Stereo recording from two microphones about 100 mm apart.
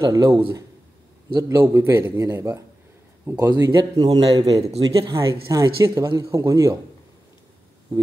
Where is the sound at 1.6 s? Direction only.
25° right (ahead or behind); by 4.6 s 45° right (ahead or behind).